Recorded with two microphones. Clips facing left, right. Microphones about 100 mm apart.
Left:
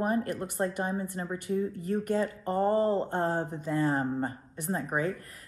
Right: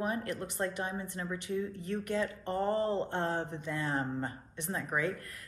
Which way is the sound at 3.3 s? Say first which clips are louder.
Left 4 dB; 5° left (ahead or behind).